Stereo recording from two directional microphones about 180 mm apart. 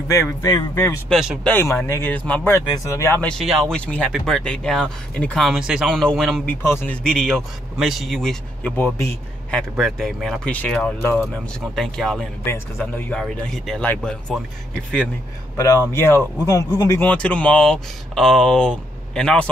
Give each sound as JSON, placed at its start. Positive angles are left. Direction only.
{"t": 0.1, "sound": "speech", "side_deg": 15}
{"t": 1.0, "sound": "speech", "side_deg": 0}
{"t": 1.5, "sound": "speech", "side_deg": 10}
{"t": 9.6, "sound": "speech", "side_deg": 0}
{"t": 15.6, "sound": "speech", "side_deg": 15}